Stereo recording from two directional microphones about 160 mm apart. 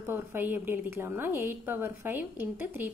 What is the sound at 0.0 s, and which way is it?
A woman's voice, 15° right (ahead or behind).